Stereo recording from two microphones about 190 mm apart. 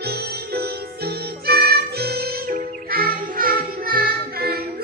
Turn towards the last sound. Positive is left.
turn(degrees=-55)  # may be behind; listen again after turning